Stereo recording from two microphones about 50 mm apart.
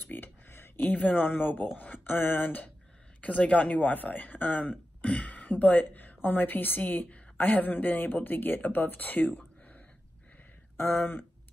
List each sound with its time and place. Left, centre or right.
0.1 s a sound: left
0.7 s a woman's voice: left
9.3 s whispering: left
10.8 s speech: left